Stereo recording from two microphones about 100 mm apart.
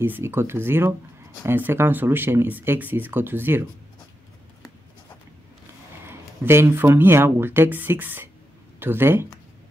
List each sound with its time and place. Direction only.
0.0 s speech: 20° right (ahead or behind)
6.0 s speech: 25° right (ahead or behind)